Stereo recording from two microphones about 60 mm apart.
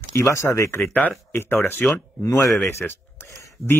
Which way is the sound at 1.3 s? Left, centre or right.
Left.